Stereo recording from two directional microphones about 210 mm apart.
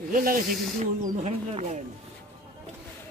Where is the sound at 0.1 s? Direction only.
40° right (ahead or behind).